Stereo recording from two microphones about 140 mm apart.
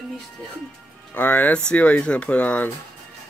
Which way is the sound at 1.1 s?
10° left (ahead or behind).